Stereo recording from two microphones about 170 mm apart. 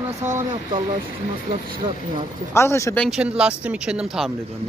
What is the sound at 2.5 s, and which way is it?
Speech, 15° left (ahead or behind).